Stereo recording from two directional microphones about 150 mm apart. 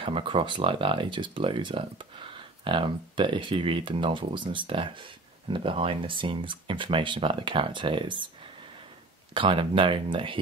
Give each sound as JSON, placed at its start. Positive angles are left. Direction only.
{"t": 0.0, "sound": "speech", "side_deg": -35}
{"t": 9.3, "sound": "speech", "side_deg": -35}